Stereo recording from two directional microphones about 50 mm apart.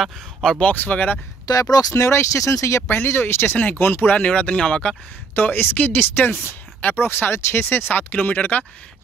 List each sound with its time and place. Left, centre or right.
0.6 s speech: left
1.6 s speech: left
3.1 s speech: left
4.2 s speech: left
5.3 s speech: left
7.9 s speech: left